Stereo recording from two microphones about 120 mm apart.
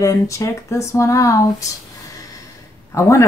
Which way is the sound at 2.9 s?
25° left (ahead or behind).